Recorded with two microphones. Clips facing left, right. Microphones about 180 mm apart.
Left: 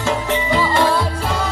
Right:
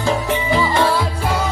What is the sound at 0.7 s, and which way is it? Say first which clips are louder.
Music: even; centre (ahead or behind).